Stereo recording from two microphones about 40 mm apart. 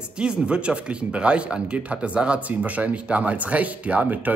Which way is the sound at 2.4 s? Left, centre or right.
Right.